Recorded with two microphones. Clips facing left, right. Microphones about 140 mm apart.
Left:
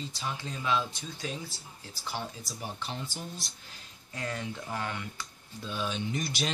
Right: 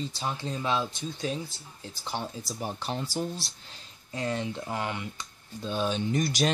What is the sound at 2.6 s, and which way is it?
Speech, 40° right (ahead or behind).